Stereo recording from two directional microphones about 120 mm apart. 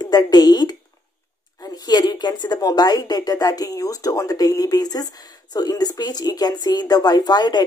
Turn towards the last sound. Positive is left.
turn(degrees=35)  # may be behind; listen again after turning